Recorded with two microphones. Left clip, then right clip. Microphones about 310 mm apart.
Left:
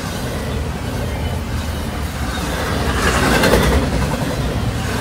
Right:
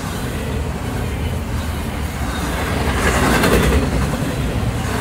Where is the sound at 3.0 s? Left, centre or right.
Centre.